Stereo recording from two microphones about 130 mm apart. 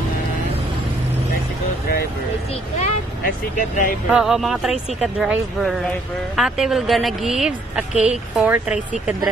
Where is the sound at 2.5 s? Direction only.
65° left (ahead or behind).